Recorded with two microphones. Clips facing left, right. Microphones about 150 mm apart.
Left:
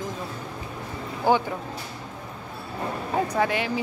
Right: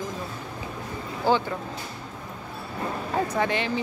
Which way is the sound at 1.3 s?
15° left (ahead or behind).